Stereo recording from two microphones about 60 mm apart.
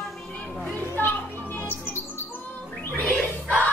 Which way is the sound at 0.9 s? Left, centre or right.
Left.